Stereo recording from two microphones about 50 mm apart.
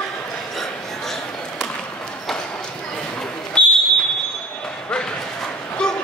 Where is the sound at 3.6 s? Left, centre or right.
Left.